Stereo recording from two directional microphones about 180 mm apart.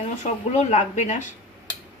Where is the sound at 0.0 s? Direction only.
40° left (ahead or behind).